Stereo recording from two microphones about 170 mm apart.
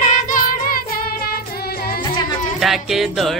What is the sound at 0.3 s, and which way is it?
Music, 60° left (ahead or behind).